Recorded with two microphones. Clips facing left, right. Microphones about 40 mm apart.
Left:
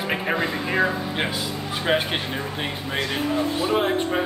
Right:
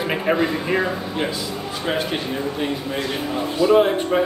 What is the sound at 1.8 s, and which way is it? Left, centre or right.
Speech, left.